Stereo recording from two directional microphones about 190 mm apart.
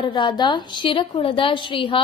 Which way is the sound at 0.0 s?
25° left (ahead or behind).